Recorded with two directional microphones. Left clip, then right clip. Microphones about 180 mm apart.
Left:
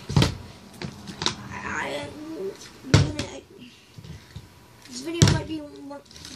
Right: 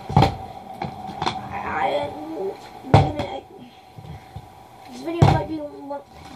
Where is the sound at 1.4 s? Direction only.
40° left (ahead or behind).